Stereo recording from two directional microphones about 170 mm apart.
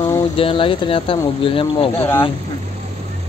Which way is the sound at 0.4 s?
30° left (ahead or behind).